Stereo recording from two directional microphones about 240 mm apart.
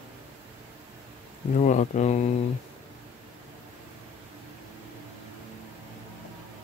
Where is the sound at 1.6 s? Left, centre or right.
Left.